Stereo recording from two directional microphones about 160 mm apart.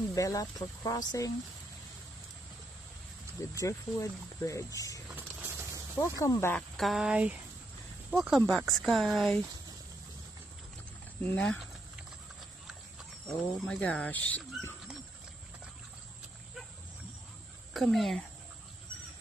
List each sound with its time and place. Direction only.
0.1 s speech: 20° left (ahead or behind)
3.5 s speech: 20° left (ahead or behind)
6.8 s speech: centre (ahead or behind)
11.2 s speech: 5° left (ahead or behind)
13.3 s speech: 5° left (ahead or behind)
17.7 s speech: centre (ahead or behind)